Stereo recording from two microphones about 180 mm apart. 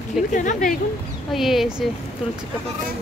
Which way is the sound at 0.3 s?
45° left (ahead or behind).